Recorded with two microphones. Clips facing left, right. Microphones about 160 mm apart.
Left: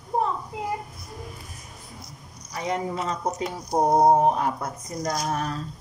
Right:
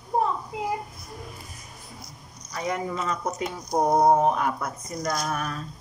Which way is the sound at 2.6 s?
25° left (ahead or behind).